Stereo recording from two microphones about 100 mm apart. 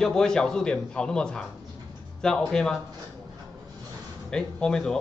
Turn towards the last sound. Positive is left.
turn(degrees=5)  # may be behind; listen again after turning